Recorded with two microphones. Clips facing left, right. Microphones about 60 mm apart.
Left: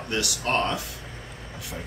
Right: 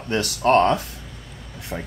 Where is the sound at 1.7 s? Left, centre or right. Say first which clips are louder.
Right 7 dB; right.